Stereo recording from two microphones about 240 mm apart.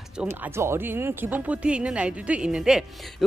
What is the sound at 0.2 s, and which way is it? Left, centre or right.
Speech, centre.